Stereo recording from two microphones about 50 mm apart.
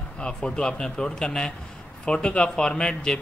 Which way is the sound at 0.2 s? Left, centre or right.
Centre.